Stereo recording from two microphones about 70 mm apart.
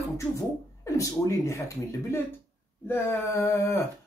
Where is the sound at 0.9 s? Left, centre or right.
Left.